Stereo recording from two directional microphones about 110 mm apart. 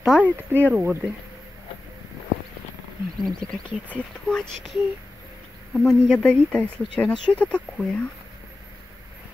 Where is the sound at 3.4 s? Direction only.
5° left (ahead or behind).